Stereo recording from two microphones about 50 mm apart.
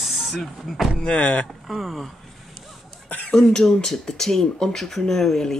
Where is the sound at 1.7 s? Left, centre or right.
Centre.